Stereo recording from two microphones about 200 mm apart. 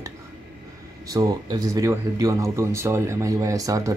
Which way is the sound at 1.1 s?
20° right (ahead or behind).